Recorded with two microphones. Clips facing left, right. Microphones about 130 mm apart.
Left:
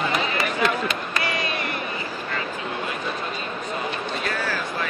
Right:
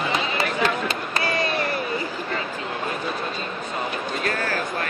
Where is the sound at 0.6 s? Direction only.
30° right (ahead or behind).